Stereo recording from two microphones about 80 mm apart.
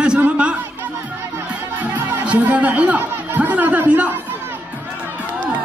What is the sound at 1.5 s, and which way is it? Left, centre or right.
Music, centre.